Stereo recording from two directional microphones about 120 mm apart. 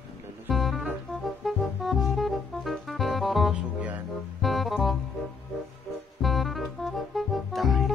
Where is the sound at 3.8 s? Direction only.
10° right (ahead or behind).